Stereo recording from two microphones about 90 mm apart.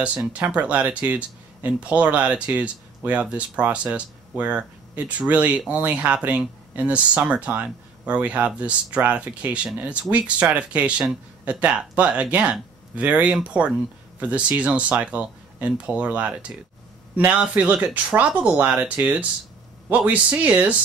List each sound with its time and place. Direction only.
0.3 s speech: 15° right (ahead or behind)